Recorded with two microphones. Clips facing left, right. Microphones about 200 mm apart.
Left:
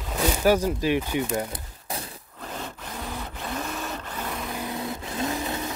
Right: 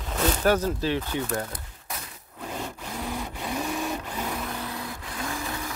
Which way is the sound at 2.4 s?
10° right (ahead or behind).